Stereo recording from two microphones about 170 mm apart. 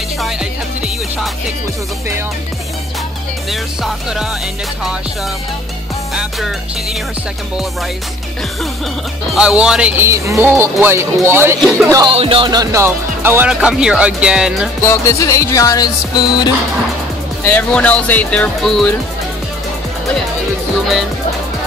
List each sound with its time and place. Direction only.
3.8 s music: 5° right (ahead or behind)
9.3 s speech: 5° right (ahead or behind)
11.8 s music: 20° right (ahead or behind)
12.1 s speech: 35° right (ahead or behind); by 14.7 s 5° right (ahead or behind)
14.9 s music: 20° left (ahead or behind)
17.5 s speech: 10° left (ahead or behind)